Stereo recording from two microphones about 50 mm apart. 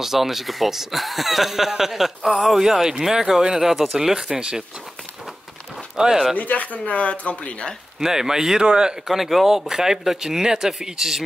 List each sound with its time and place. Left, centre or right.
0.0 s speech: centre
5.9 s speech: centre
6.3 s speech: left
8.0 s speech: centre
9.0 s speech: centre